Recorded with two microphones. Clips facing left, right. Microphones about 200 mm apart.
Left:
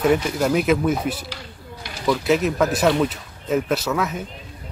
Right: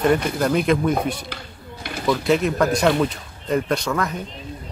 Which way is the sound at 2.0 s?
5° left (ahead or behind).